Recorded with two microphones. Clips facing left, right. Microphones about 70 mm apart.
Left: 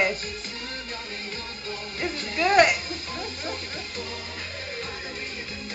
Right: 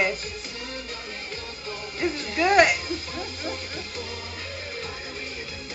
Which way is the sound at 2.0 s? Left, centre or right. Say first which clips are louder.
Right 2 dB; centre.